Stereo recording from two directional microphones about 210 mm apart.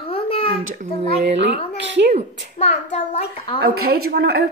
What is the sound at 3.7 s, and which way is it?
Speech, 45° right (ahead or behind).